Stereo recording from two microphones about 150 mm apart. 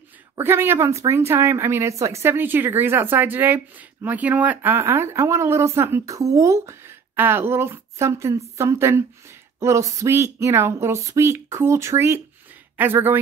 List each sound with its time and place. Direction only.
0.4 s speech: 15° right (ahead or behind)